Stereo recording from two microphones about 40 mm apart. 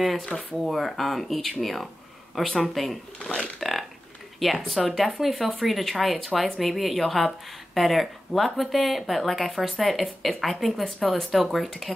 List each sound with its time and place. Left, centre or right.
0.6 s speech: centre
3.2 s speech: left
3.5 s speech: centre